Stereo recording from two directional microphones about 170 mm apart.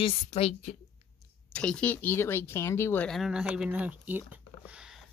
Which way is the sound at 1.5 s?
5° left (ahead or behind).